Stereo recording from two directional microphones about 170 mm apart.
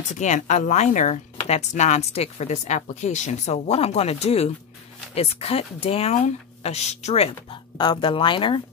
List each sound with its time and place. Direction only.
0.1 s speech: 45° left (ahead or behind)
7.7 s speech: 25° left (ahead or behind)